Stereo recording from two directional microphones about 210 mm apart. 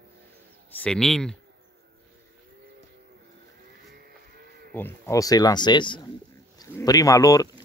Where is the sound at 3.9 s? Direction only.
45° right (ahead or behind).